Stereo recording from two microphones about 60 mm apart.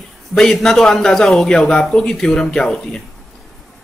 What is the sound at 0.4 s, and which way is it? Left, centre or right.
A man's voice, centre.